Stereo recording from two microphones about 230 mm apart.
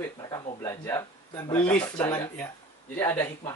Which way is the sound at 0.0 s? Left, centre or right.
Centre.